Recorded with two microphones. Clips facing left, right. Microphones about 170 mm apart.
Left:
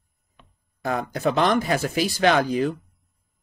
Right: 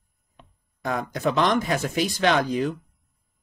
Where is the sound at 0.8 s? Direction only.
35° left (ahead or behind).